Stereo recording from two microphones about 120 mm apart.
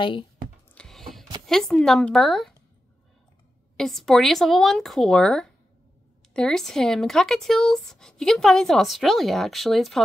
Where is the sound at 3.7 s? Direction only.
Centre (ahead or behind).